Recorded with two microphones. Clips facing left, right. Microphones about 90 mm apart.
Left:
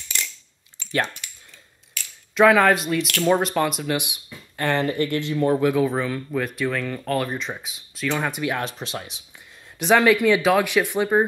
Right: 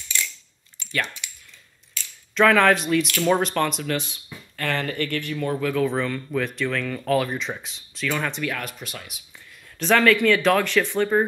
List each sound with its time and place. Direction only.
1.2 s a sound: 45° left (ahead or behind)
2.3 s speech: 10° left (ahead or behind); by 5.7 s 25° left (ahead or behind)
5.7 s speech: 10° left (ahead or behind)
8.5 s speech: 30° left (ahead or behind)
9.8 s speech: 15° left (ahead or behind)